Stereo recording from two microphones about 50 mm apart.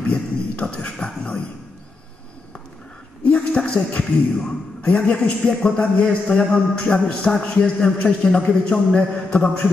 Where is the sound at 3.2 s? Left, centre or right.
Left.